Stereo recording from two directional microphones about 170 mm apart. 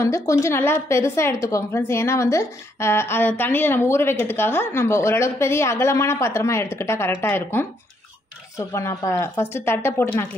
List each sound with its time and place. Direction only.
0.0 s a woman's voice: 15° left (ahead or behind)